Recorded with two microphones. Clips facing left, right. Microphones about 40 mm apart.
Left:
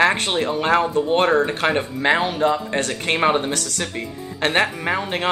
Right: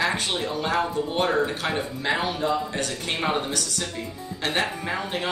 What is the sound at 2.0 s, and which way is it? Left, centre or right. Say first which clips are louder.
Speech: left 7 dB; left.